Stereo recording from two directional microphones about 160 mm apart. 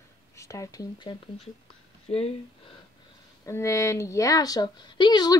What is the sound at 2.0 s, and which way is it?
Speech, 40° left (ahead or behind).